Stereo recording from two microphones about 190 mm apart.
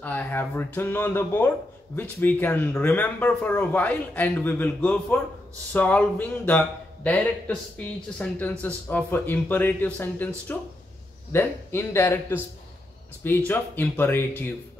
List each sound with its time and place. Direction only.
0.0 s speech: 10° left (ahead or behind)
13.5 s speech: 10° left (ahead or behind)